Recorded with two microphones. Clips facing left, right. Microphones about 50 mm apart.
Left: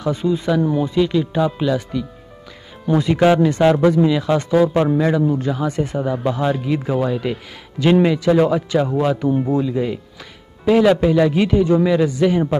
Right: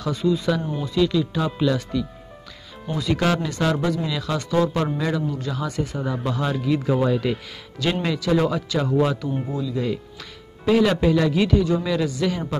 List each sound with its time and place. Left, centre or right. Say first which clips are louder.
0.0 s a man's voice: left 2 dB; left
1.4 s a man's voice: left 4 dB; centre
9.5 s speech: left 9 dB; left
10.6 s a man's voice: left 5 dB; centre